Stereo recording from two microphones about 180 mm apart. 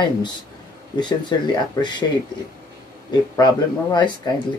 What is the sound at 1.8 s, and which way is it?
Speech, 25° left (ahead or behind).